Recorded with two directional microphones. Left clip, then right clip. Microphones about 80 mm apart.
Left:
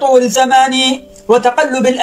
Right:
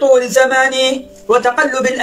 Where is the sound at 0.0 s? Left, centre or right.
Left.